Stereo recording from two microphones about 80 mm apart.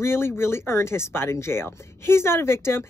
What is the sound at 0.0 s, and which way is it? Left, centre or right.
Speech, left.